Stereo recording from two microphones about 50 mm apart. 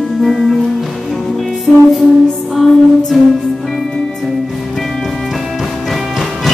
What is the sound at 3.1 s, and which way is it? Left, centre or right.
Music, centre.